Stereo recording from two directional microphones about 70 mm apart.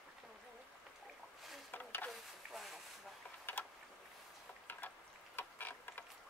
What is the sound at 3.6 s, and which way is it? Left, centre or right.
Vehicle, left.